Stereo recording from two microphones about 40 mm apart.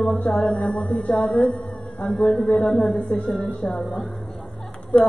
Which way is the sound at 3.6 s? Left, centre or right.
Left.